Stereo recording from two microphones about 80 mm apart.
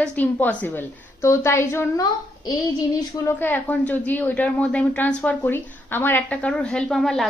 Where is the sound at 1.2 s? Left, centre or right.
Left.